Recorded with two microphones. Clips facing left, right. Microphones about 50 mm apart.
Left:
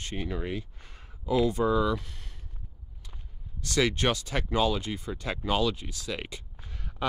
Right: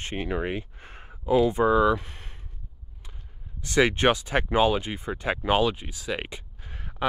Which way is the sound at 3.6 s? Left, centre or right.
Right.